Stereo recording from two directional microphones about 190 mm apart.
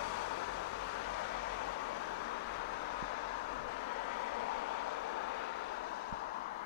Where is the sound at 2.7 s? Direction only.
65° left (ahead or behind).